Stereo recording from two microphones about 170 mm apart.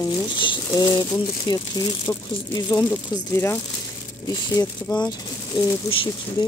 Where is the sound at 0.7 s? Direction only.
20° left (ahead or behind).